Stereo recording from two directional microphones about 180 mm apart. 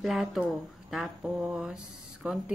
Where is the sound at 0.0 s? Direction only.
Centre (ahead or behind).